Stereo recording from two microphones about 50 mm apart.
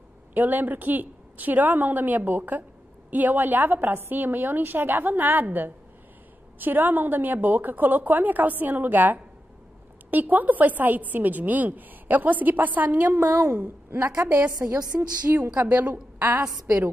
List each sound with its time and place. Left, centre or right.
0.3 s a woman's voice: right
13.9 s a woman's voice: right
15.5 s a woman's voice: right